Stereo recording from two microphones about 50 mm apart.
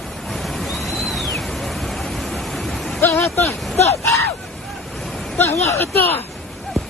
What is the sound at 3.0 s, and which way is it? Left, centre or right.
Speech, left.